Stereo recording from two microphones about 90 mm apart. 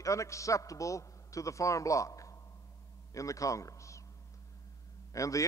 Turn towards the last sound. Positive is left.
turn(degrees=35)  # may be behind; listen again after turning